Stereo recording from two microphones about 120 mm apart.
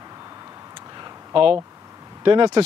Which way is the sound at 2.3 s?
45° right (ahead or behind).